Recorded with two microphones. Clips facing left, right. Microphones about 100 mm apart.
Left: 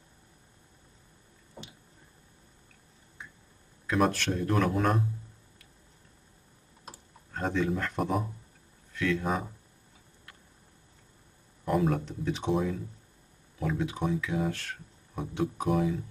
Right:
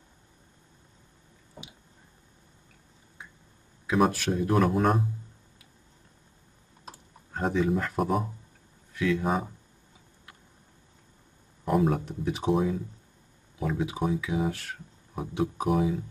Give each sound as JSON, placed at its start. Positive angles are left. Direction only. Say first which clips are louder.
{"t": 3.8, "sound": "speech", "louder": "right 2 dB", "side_deg": -5}
{"t": 6.9, "sound": "computer keyboard", "louder": "right 2 dB", "side_deg": -5}
{"t": 8.9, "sound": "speech", "louder": "right 3 dB", "side_deg": -5}
{"t": 11.6, "sound": "speech", "louder": "right 2 dB", "side_deg": -5}